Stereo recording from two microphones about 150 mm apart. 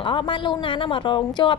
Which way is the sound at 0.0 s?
35° left (ahead or behind).